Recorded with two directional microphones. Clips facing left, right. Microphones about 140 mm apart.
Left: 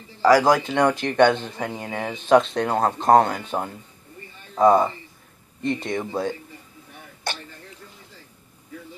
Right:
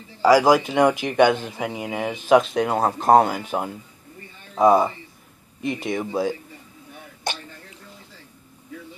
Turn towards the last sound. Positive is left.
turn(degrees=-15)  # may be behind; listen again after turning